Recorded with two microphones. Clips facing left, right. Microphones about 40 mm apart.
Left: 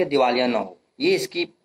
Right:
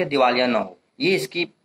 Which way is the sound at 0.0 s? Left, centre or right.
Right.